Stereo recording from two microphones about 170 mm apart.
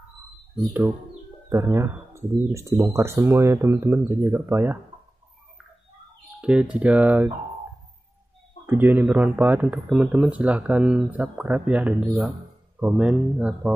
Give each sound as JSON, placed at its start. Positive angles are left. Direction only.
{"t": 1.5, "sound": "speech", "side_deg": -15}
{"t": 6.4, "sound": "speech", "side_deg": -5}
{"t": 8.6, "sound": "speech", "side_deg": -10}